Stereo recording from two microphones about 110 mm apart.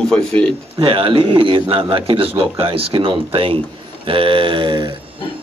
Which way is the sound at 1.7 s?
55° right (ahead or behind).